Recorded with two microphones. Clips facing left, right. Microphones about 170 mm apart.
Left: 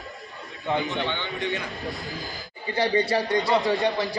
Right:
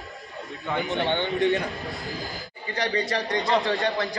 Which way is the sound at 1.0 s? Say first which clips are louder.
Right 6 dB; 50° right (ahead or behind).